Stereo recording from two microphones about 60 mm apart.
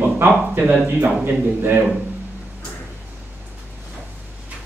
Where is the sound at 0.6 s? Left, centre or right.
Right.